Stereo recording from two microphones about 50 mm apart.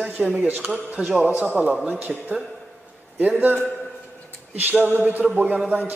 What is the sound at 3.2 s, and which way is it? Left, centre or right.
Speech, right.